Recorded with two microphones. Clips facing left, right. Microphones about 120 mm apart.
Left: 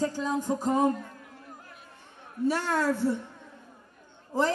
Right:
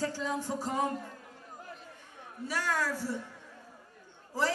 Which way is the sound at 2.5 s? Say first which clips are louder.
Left 5 dB; 25° left (ahead or behind).